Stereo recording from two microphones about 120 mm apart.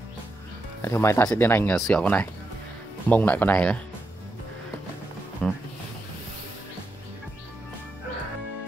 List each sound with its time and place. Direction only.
0.8 s speech: 20° left (ahead or behind)
5.4 s speech: 10° left (ahead or behind)